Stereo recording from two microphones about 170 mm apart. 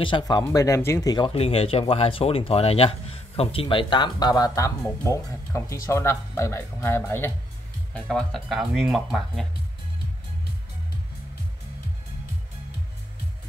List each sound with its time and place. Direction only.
0.0 s speech: 25° left (ahead or behind); by 9.5 s centre (ahead or behind)